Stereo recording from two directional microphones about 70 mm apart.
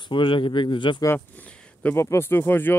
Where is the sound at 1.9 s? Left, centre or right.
Left.